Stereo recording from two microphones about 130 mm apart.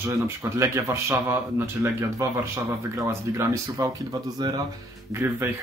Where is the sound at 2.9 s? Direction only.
25° right (ahead or behind).